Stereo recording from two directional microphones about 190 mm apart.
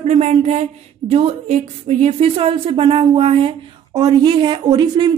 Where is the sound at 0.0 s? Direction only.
35° right (ahead or behind).